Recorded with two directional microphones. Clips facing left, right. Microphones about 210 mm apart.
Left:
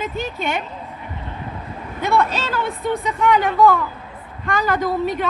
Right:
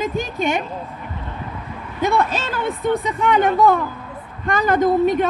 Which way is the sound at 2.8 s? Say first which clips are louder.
Right 1 dB; 50° right (ahead or behind).